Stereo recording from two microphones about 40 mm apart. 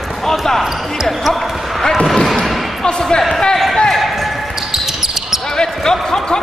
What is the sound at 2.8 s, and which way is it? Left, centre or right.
Basketball bounce, centre.